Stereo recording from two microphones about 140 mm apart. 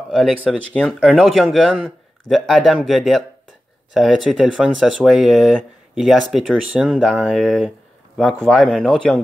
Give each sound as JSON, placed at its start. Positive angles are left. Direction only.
{"t": 0.1, "sound": "speech", "side_deg": 0}